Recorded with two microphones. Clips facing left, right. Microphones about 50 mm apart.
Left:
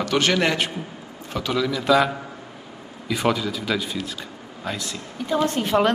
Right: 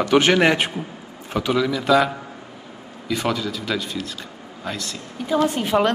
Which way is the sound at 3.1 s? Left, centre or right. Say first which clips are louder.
Left 1 dB; centre.